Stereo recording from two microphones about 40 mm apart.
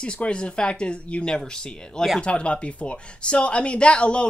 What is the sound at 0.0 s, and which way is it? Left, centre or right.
Speech, left.